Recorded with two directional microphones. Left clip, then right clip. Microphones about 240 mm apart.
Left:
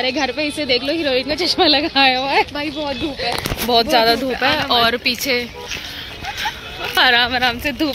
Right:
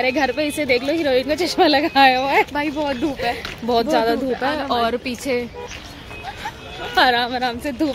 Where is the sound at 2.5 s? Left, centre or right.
Right.